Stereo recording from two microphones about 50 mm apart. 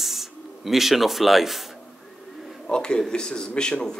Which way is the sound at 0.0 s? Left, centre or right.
Centre.